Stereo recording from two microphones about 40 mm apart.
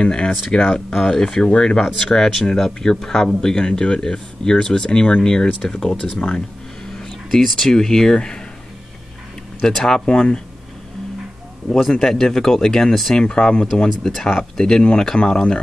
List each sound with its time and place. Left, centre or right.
0.0 s speech: left
2.0 s speech: centre
7.0 s speech: centre
9.6 s speech: centre
11.9 s speech: centre